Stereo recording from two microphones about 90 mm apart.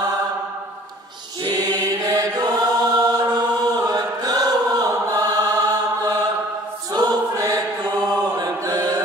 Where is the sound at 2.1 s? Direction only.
45° right (ahead or behind).